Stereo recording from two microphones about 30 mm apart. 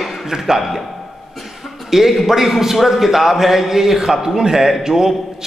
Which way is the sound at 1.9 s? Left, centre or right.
Centre.